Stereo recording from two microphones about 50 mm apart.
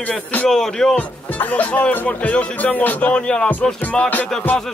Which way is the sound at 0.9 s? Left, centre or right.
Left.